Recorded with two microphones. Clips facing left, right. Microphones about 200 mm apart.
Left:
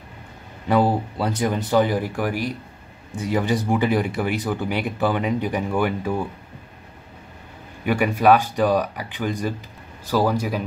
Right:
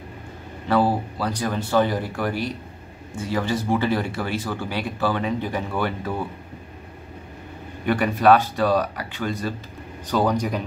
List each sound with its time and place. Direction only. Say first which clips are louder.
0.7 s speech: left 1 dB; 20° left (ahead or behind)
7.8 s speech: even; 10° left (ahead or behind)